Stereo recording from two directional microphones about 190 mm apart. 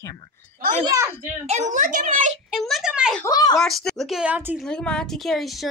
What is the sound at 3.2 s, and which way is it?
Speech, 20° left (ahead or behind).